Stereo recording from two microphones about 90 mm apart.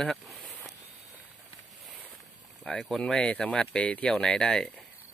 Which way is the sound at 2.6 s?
5° left (ahead or behind).